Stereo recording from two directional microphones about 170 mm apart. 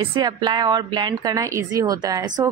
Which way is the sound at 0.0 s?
25° right (ahead or behind).